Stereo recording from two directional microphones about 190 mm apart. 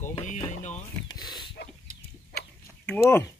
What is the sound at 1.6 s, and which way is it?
Livestock, 55° left (ahead or behind).